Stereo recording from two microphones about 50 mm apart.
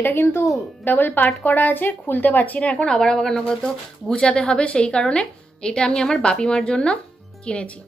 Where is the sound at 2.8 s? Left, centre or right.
Centre.